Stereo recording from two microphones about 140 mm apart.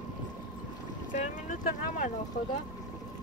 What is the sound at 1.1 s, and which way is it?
Speech, 65° left (ahead or behind).